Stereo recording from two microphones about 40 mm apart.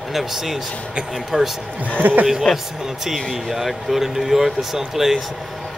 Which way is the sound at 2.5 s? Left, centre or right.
Centre.